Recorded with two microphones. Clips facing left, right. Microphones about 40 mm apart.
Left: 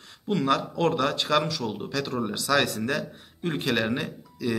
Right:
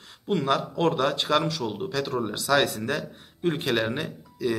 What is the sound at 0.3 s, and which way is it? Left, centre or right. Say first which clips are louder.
Speech: even; centre.